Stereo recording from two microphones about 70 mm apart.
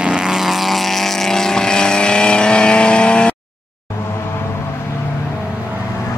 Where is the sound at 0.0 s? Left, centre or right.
Centre.